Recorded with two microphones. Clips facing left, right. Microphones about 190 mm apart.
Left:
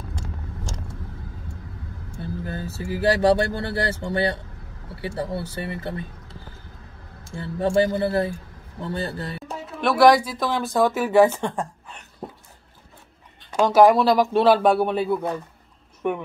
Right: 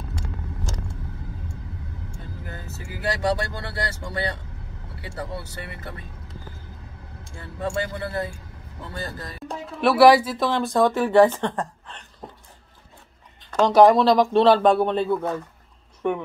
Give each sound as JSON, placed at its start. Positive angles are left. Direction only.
{"t": 2.4, "sound": "speech", "side_deg": 30}
{"t": 7.3, "sound": "speech", "side_deg": 30}
{"t": 9.5, "sound": "speech", "side_deg": 0}
{"t": 12.2, "sound": "dog", "side_deg": 5}
{"t": 13.5, "sound": "speech", "side_deg": 10}